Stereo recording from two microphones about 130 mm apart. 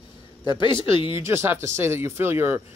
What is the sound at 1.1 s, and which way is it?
Speech, 20° right (ahead or behind).